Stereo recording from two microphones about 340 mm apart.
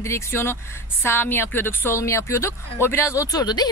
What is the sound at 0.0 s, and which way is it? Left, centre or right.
Speech, centre.